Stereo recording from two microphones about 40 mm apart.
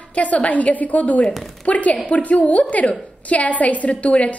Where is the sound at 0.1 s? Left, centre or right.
Left.